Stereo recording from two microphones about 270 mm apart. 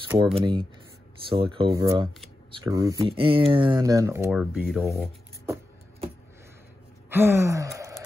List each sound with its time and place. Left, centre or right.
0.3 s speech: centre
4.8 s speech: centre
7.1 s gasp: centre